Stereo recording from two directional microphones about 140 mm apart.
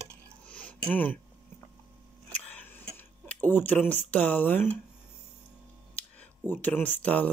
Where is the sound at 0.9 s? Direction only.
10° left (ahead or behind).